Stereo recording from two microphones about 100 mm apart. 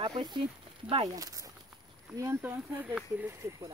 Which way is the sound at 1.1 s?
35° right (ahead or behind).